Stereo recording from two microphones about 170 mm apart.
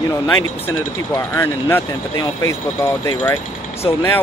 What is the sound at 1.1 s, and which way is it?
Speech, 15° left (ahead or behind).